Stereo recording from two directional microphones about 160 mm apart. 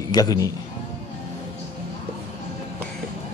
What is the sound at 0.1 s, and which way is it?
Speech, 25° left (ahead or behind).